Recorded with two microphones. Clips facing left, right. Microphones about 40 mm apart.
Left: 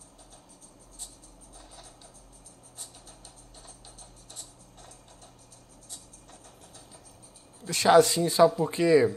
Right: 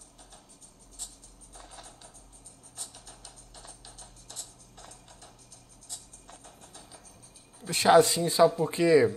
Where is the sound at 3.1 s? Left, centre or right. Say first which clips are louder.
Even; right.